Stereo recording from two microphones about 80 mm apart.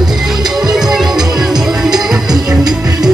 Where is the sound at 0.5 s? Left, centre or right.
Centre.